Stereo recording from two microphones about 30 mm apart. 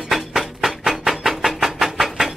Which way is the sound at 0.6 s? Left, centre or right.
Centre.